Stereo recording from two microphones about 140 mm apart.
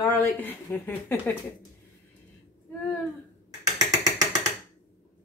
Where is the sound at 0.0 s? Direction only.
15° left (ahead or behind).